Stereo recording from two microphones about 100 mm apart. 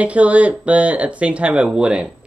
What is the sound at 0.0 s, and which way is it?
Speech, 15° right (ahead or behind).